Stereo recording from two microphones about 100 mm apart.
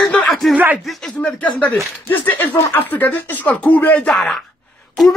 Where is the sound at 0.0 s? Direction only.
10° left (ahead or behind).